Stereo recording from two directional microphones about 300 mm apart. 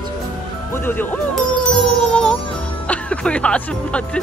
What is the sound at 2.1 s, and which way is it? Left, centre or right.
Music, centre.